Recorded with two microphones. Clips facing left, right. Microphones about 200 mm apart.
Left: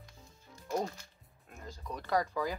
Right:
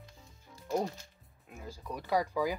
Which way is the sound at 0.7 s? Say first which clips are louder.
Right 2 dB; 15° right (ahead or behind).